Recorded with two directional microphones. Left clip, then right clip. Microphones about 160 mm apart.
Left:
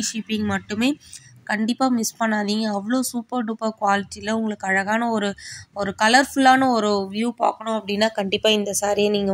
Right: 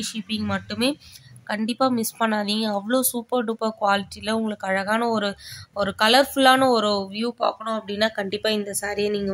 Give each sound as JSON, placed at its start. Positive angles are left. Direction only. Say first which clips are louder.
{"t": 0.0, "sound": "a woman's voice", "louder": "left 3 dB", "side_deg": 15}